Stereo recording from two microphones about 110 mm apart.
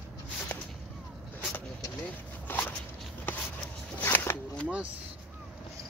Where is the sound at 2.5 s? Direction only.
20° left (ahead or behind).